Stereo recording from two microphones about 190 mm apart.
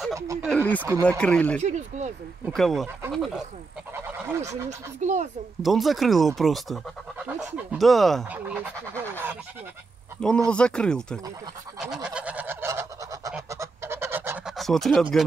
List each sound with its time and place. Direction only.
0.1 s a sound: 15° right (ahead or behind)
0.5 s speech: 10° left (ahead or behind)
1.6 s speech: 40° right (ahead or behind)
2.5 s speech: centre (ahead or behind)
4.6 s speech: 40° right (ahead or behind)
5.6 s speech: centre (ahead or behind)
10.2 s speech: 5° left (ahead or behind)
11.8 s goose: 5° right (ahead or behind)
14.6 s speech: centre (ahead or behind)